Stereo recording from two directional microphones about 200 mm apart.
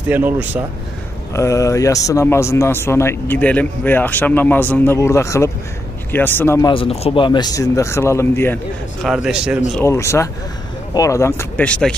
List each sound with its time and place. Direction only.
0.1 s speech: 10° right (ahead or behind)
1.3 s speech: 15° left (ahead or behind)
6.7 s speech: 30° left (ahead or behind); by 8.5 s 10° left (ahead or behind)
9.0 s a man's voice: 5° right (ahead or behind)
9.8 s speech: 15° left (ahead or behind)